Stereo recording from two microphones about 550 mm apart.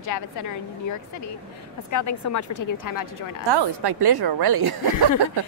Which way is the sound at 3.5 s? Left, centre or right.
Right.